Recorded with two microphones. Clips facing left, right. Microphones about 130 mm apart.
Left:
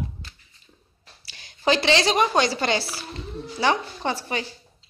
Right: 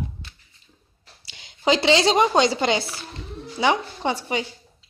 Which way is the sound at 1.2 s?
20° right (ahead or behind).